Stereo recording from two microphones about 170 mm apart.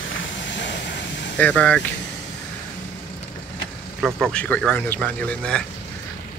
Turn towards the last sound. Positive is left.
turn(degrees=5)  # may be behind; listen again after turning